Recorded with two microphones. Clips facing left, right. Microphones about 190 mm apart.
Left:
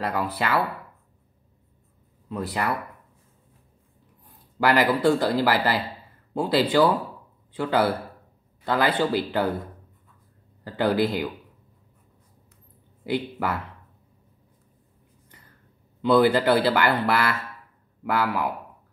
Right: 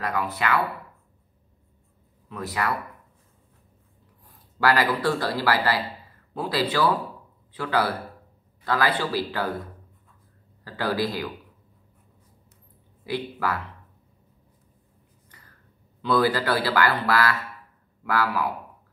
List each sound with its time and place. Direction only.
0.0 s speech: 30° left (ahead or behind)
2.2 s a man's voice: 25° left (ahead or behind)
4.6 s a man's voice: 25° left (ahead or behind)
10.6 s a man's voice: 20° left (ahead or behind)
13.0 s a man's voice: 25° left (ahead or behind)
16.0 s a man's voice: 25° left (ahead or behind)